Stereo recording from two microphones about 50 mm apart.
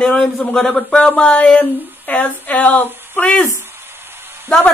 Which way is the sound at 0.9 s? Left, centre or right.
Left.